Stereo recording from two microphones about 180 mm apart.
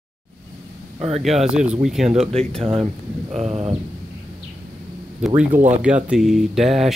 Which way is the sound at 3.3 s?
35° right (ahead or behind).